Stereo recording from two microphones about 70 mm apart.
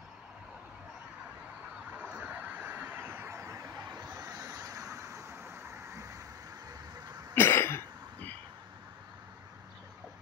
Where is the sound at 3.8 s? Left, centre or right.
Right.